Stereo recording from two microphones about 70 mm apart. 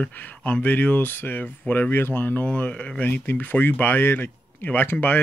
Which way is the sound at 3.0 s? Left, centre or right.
Left.